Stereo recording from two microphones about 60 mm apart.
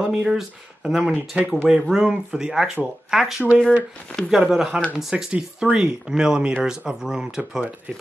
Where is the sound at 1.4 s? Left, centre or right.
Right; by 3.4 s centre.